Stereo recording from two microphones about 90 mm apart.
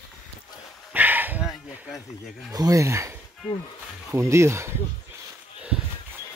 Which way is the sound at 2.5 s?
40° right (ahead or behind).